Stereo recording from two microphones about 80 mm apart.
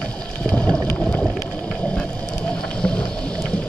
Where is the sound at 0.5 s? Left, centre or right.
Centre.